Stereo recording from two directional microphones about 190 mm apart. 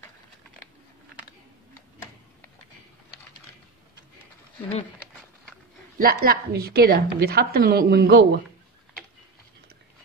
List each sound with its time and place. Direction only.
5.9 s a woman's voice: 50° right (ahead or behind)